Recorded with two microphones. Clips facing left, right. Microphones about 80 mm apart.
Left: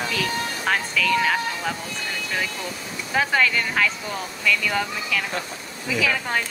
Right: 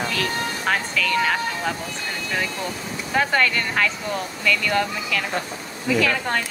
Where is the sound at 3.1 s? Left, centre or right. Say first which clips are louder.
Right 1 dB; centre.